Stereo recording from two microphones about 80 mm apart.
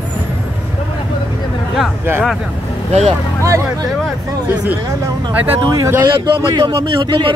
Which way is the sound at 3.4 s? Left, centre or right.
Right.